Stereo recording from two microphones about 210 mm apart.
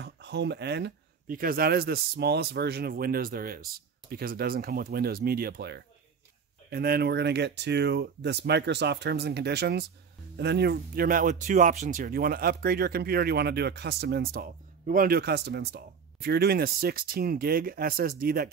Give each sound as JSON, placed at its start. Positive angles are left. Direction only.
{"t": 0.0, "sound": "speech", "side_deg": -55}